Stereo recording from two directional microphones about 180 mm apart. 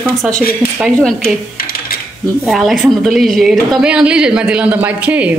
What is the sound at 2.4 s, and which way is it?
A woman's voice, centre (ahead or behind).